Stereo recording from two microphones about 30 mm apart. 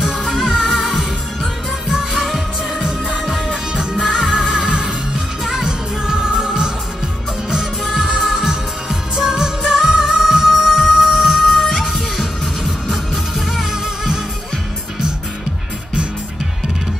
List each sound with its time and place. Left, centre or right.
0.0 s music: centre
2.1 s music: centre
5.7 s music: right
7.8 s music: centre
9.1 s music of asia: centre
9.6 s music: centre